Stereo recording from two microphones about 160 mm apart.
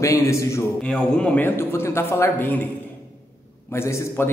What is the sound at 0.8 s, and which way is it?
Speech, 5° left (ahead or behind).